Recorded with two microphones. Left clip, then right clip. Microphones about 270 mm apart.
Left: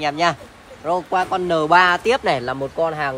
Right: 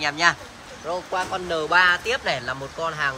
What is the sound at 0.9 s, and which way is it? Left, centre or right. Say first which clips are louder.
Speech: left 7 dB; left.